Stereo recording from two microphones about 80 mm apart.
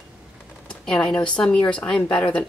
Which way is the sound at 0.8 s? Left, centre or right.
Centre.